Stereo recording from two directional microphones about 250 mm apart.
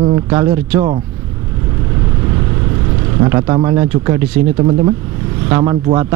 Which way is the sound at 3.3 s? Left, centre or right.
Centre.